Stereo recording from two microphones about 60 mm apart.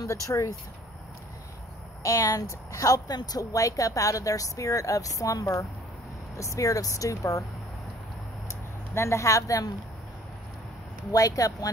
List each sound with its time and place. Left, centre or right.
0.0 s speech: left
2.0 s speech: left
8.9 s speech: left
11.1 s speech: left